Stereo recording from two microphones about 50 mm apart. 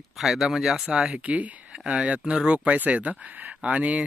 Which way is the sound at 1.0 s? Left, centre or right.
Right.